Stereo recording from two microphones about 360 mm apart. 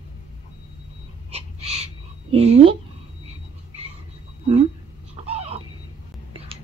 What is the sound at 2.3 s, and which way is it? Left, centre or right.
Speech, centre.